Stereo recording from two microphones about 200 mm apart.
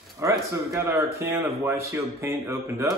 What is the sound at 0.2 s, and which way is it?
Speech, 15° right (ahead or behind).